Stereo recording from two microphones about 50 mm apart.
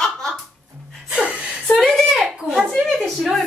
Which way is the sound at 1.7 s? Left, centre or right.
Centre.